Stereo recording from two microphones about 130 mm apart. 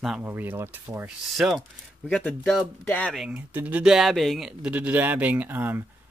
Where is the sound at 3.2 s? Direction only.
10° right (ahead or behind).